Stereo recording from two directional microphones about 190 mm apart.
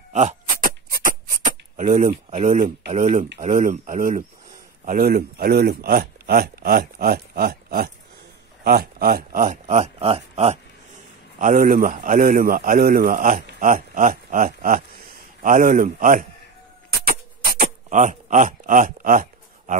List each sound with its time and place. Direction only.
0.1 s beatboxing: 35° right (ahead or behind)
2.0 s speech: 35° right (ahead or behind)
17.6 s a sound: 40° right (ahead or behind)